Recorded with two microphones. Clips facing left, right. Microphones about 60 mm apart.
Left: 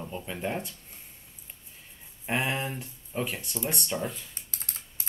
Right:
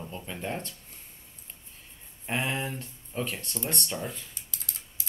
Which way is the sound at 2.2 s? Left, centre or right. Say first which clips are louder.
Left 1 dB; centre.